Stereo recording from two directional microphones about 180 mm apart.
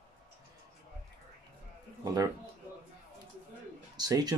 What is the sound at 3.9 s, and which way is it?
Speech, 20° right (ahead or behind).